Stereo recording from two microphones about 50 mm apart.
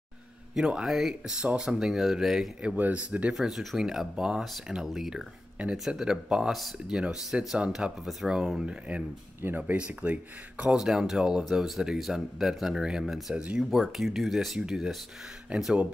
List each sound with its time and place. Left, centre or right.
0.6 s speech: centre
2.6 s speech: right
3.3 s speech: centre
7.3 s speech: right
7.7 s speech: centre
9.4 s speech: right
10.7 s speech: centre
11.4 s speech: centre
15.5 s speech: right